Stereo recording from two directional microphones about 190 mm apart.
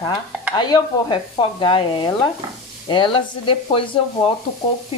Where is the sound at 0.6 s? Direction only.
20° left (ahead or behind).